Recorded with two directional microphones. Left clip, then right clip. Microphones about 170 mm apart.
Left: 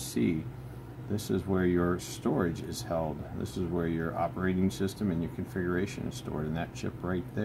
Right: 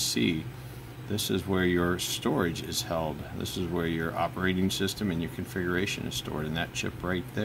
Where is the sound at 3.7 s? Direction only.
20° right (ahead or behind).